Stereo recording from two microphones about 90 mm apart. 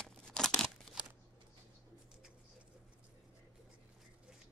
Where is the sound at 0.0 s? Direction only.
5° left (ahead or behind).